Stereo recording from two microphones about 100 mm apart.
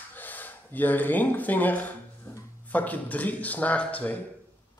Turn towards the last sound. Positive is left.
turn(degrees=15)  # may be behind; listen again after turning